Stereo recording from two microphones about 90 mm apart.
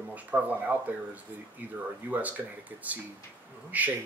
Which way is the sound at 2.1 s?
15° right (ahead or behind).